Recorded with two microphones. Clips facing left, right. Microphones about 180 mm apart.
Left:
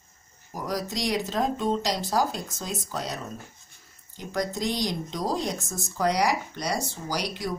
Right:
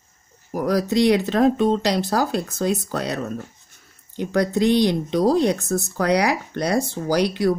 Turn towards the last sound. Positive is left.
turn(degrees=-65)  # may be behind; listen again after turning